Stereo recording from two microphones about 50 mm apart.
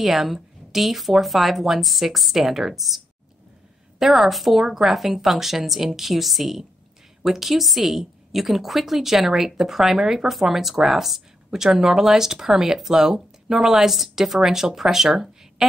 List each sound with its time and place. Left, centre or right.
0.0 s speech: centre
4.0 s a woman's voice: centre